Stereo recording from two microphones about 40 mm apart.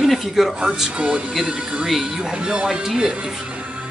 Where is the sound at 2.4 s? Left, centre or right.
Right.